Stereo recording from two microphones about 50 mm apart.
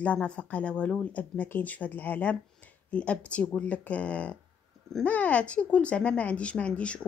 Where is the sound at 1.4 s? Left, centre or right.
Left.